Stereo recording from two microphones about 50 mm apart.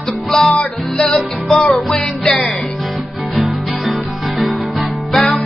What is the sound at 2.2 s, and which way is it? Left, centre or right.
Music, left.